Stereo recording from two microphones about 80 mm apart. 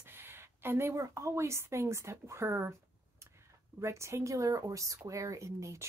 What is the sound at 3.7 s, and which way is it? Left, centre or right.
Speech, right.